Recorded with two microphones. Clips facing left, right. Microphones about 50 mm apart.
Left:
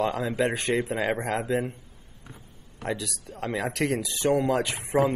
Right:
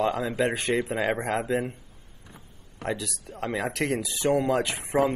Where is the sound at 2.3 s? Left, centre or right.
Right.